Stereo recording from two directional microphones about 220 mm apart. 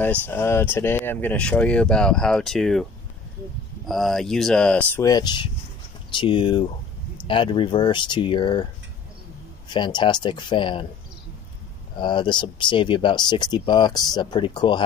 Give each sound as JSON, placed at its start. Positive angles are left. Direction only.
{"t": 0.3, "sound": "speech", "side_deg": 10}
{"t": 9.7, "sound": "speech", "side_deg": 20}
{"t": 12.0, "sound": "speech", "side_deg": 20}